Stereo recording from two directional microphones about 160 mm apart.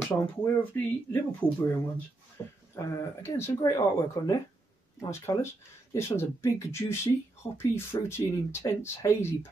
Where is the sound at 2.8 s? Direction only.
20° left (ahead or behind).